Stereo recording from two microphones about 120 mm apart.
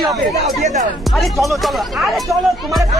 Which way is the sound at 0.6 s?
90° right.